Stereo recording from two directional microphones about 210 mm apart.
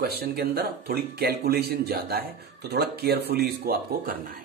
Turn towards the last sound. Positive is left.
turn(degrees=-45)  # may be behind; listen again after turning